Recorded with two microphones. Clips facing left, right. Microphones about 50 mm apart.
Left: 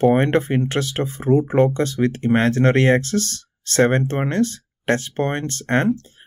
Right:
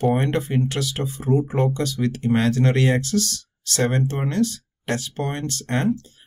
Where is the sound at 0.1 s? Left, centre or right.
Left.